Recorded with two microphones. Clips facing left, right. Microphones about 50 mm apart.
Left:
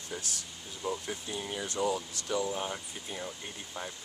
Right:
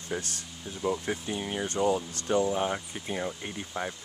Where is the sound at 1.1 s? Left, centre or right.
Right.